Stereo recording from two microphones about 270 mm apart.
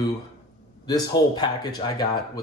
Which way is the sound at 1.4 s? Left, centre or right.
Centre.